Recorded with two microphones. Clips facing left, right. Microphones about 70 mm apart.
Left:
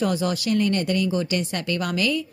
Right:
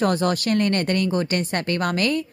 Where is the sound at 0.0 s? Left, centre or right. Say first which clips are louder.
Right 3 dB; right.